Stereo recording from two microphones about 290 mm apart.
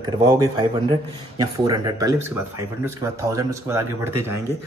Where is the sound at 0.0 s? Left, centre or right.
Centre.